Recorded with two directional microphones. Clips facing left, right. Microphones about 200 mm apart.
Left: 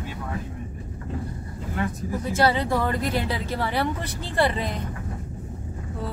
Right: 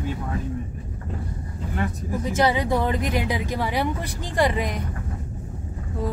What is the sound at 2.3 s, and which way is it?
Speech, 15° right (ahead or behind).